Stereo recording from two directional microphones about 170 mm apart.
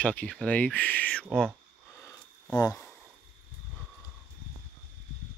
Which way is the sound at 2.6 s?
20° left (ahead or behind).